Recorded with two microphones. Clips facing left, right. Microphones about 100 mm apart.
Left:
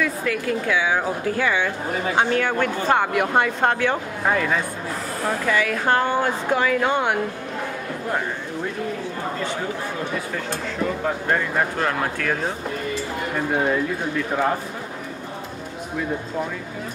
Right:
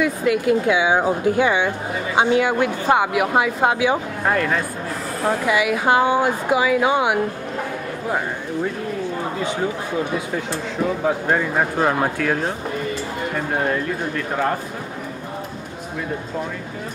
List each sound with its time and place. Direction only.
0.0 s a woman's voice: 20° right (ahead or behind); by 4.6 s centre (ahead or behind)
5.5 s speech: 10° right (ahead or behind)
11.1 s speech: 10° right (ahead or behind)
12.2 s speech: 5° right (ahead or behind)
13.7 s speech: 5° left (ahead or behind)